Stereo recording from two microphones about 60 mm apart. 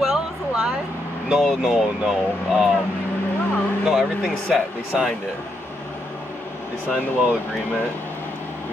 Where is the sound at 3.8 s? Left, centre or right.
Centre.